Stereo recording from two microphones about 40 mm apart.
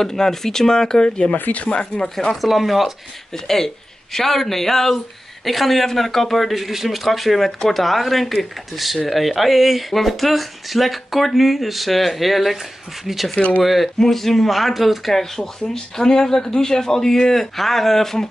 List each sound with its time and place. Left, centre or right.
0.0 s speech: centre
1.3 s speech: left
1.6 s speech: left
2.4 s speech: centre
3.4 s speech: centre
15.1 s speech: centre